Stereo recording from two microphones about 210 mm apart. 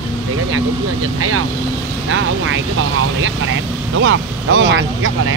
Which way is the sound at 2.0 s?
65° right (ahead or behind).